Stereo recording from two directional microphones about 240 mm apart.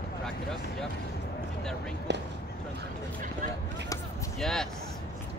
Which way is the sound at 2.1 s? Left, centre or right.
Right.